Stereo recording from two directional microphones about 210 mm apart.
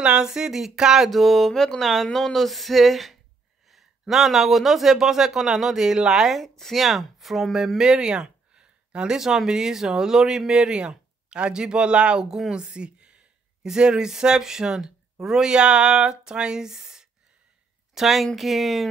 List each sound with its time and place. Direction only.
0.0 s a man's voice: 5° right (ahead or behind)